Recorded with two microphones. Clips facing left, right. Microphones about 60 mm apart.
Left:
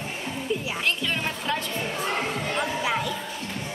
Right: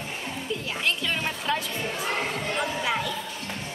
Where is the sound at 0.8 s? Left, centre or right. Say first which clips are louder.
Right 1 dB; centre.